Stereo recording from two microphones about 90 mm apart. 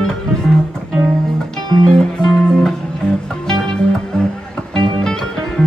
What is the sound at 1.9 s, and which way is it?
Music, 5° left (ahead or behind).